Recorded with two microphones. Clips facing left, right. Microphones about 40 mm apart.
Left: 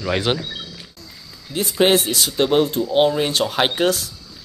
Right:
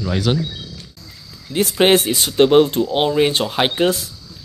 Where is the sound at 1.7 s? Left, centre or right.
Right.